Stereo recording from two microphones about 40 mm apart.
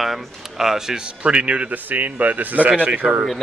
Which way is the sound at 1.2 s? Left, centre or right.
Right.